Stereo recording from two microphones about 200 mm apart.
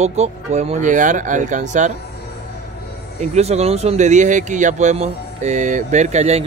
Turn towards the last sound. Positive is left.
turn(degrees=-35)  # may be behind; listen again after turning